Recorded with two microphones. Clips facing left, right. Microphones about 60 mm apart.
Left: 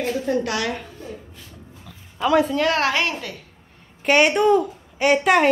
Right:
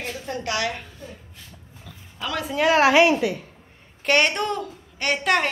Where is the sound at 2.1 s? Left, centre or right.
Left.